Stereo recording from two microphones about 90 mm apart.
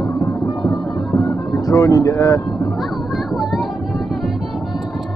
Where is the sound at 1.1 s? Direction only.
45° left (ahead or behind).